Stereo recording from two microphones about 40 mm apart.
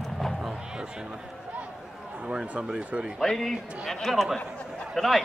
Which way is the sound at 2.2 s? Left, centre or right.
Right.